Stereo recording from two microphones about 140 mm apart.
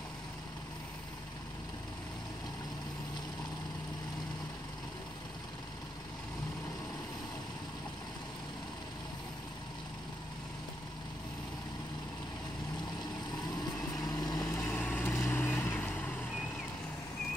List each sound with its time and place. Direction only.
13.9 s vehicle: 25° left (ahead or behind)
14.4 s vehicle: 10° left (ahead or behind)